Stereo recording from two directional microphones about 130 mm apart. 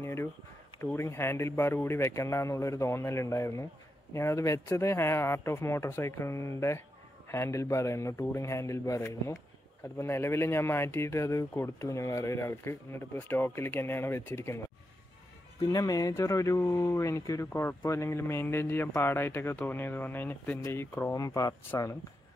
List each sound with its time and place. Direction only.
0.0 s a sound: 20° left (ahead or behind)
0.7 s speech: 20° left (ahead or behind)
15.6 s speech: 30° left (ahead or behind)